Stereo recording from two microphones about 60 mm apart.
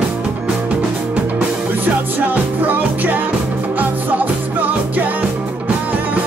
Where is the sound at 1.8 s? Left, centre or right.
Right.